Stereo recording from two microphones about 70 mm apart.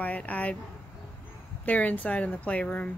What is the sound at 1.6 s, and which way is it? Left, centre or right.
Speech, left.